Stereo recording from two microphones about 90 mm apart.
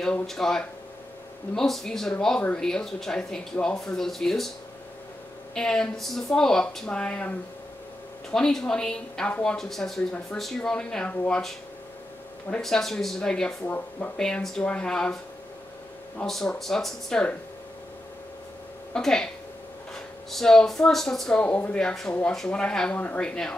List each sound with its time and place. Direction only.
0.0 s speech: 5° left (ahead or behind)
5.5 s speech: 5° left (ahead or behind)
13.7 s speech: 20° left (ahead or behind)
14.1 s speech: 10° left (ahead or behind)
16.3 s speech: 5° left (ahead or behind)
18.9 s speech: 5° left (ahead or behind)
21.4 s speech: 15° left (ahead or behind)